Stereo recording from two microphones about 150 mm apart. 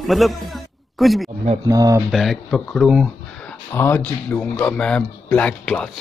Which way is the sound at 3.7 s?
15° left (ahead or behind).